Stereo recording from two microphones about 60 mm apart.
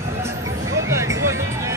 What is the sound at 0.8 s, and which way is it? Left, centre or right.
Music, right.